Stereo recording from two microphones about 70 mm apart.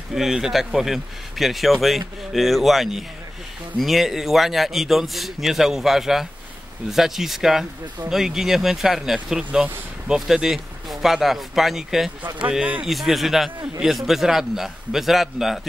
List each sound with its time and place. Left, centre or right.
0.1 s speech: centre
12.4 s speech: centre
12.8 s speech: centre